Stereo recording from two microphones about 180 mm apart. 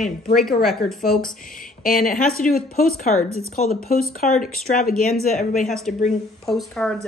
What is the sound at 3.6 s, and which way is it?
Speech, 55° left (ahead or behind).